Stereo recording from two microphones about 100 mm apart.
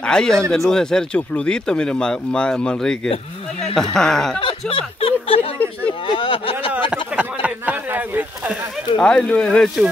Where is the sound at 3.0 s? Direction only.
90° left.